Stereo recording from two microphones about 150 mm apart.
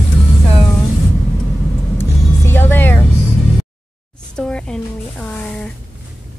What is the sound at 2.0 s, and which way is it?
Vehicle, 15° left (ahead or behind).